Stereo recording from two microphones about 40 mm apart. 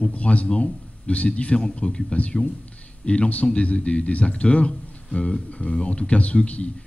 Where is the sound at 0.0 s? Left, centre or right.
Left.